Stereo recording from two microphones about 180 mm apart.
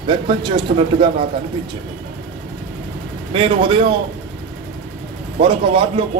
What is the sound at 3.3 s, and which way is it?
Speech, 30° right (ahead or behind).